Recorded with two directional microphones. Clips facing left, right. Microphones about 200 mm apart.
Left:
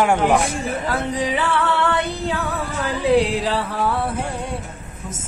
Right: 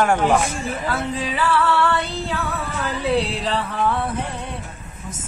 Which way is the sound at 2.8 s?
15° left (ahead or behind).